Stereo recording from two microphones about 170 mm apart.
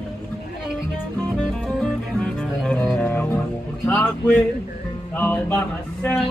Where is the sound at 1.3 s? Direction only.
5° left (ahead or behind).